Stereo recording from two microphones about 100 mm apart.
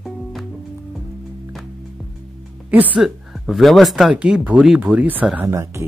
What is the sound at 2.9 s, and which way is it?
Speech, centre (ahead or behind).